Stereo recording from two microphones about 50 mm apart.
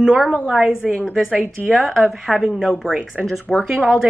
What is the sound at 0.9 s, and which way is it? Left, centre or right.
Speech, centre.